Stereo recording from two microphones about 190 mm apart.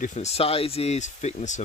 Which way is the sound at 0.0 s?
35° left (ahead or behind).